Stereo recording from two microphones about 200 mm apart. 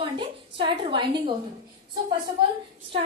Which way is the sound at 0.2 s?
25° right (ahead or behind).